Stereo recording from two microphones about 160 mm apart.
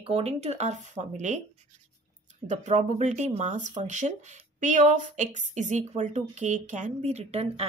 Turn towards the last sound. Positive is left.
turn(degrees=-40)  # may be behind; listen again after turning